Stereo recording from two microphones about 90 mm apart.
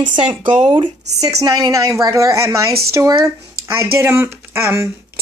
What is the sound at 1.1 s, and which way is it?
A woman's voice, 40° right (ahead or behind).